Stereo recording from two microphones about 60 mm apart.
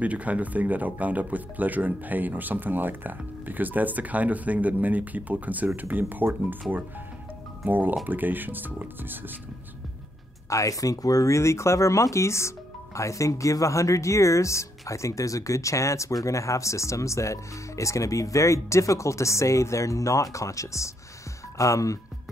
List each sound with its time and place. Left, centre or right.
0.0 s speech: right
7.6 s speech: right
10.5 s speech: left